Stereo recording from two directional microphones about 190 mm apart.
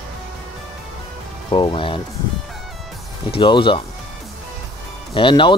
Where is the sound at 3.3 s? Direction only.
25° left (ahead or behind).